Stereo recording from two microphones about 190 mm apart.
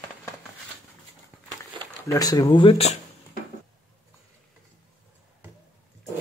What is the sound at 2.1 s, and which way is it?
Speech, 20° left (ahead or behind).